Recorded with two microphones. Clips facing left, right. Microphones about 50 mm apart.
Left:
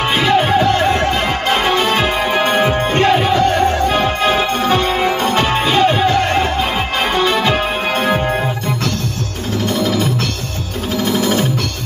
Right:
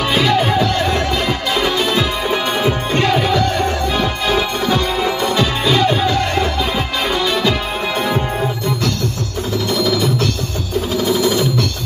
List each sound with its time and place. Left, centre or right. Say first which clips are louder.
0.2 s music: left 3 dB; left
1.5 s music: left 3 dB; left
9.8 s music: even; left
11.1 s music: left 1 dB; left